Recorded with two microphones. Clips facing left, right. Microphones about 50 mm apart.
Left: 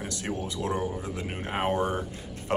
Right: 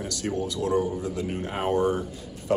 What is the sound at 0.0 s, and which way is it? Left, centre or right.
Speech, left.